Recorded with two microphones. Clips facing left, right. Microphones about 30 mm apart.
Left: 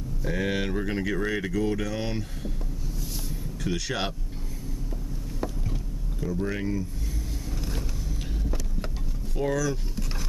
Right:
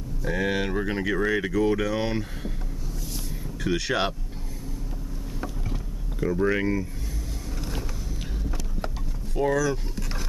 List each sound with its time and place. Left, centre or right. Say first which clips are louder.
0.2 s speech: right 2 dB; centre
3.6 s speech: right 4 dB; centre
6.1 s speech: right 6 dB; right
8.5 s vehicle: right 2 dB; centre